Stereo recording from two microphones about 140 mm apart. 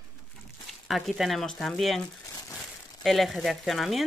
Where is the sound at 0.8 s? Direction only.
Centre (ahead or behind).